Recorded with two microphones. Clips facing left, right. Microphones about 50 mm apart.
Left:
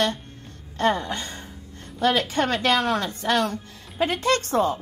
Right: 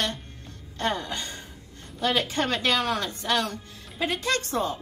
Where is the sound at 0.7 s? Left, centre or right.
Left.